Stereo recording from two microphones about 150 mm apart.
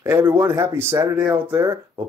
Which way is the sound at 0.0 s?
15° right (ahead or behind).